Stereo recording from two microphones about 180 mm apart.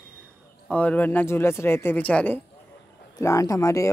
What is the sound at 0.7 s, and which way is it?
Speech, 10° left (ahead or behind).